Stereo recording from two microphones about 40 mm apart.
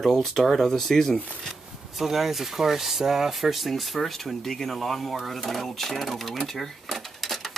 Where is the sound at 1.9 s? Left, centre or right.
Centre.